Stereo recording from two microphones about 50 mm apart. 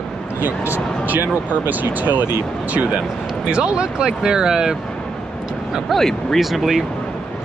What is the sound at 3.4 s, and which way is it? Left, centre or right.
Speech, centre.